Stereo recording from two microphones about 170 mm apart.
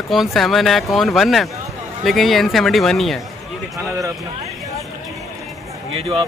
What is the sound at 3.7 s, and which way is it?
Speech, 20° right (ahead or behind).